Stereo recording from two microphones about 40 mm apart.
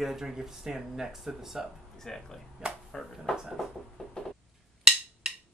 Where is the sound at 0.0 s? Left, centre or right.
Centre.